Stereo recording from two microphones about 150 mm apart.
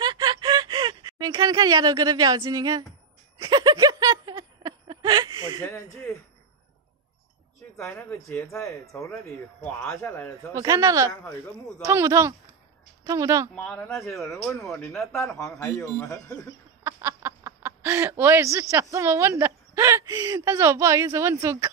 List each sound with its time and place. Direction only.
0.0 s a sound: 30° right (ahead or behind)
7.7 s speech: 15° left (ahead or behind)
9.6 s speech: 5° left (ahead or behind)
10.5 s speech: 20° right (ahead or behind)
13.6 s speech: 5° left (ahead or behind)
16.8 s speech: 15° right (ahead or behind)